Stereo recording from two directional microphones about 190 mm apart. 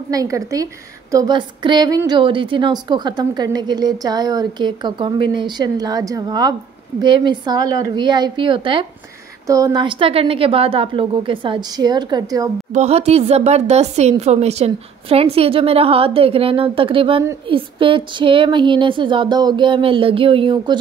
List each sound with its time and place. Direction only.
0.1 s a woman's voice: 20° right (ahead or behind)
12.7 s a woman's voice: 35° right (ahead or behind)